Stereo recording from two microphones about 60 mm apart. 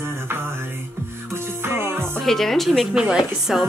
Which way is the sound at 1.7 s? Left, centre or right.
Right.